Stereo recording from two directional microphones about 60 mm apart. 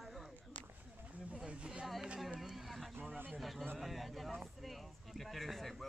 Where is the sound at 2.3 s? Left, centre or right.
Centre.